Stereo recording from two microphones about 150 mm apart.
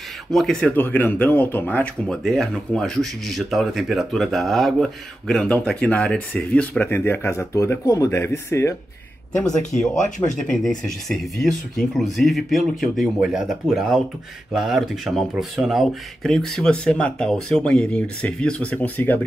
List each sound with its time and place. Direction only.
0.3 s speech: centre (ahead or behind); by 8.7 s 20° left (ahead or behind)
9.4 s speech: 5° left (ahead or behind)
10.0 s speech: 55° left (ahead or behind)
10.3 s speech: 5° left (ahead or behind)